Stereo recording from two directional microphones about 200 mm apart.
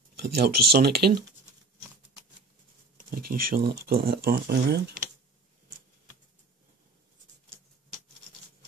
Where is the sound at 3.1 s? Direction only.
45° right (ahead or behind).